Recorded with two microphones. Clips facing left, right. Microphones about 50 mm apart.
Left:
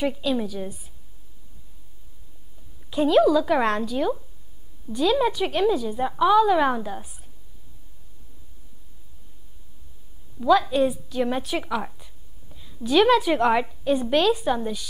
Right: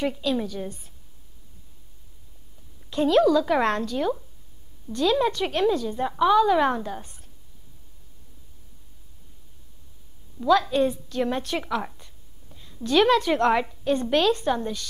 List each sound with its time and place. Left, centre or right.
0.0 s a woman's voice: centre
2.9 s a woman's voice: centre
10.4 s a woman's voice: centre